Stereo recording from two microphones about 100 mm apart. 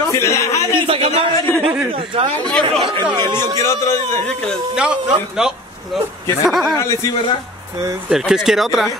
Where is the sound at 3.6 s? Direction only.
30° left (ahead or behind).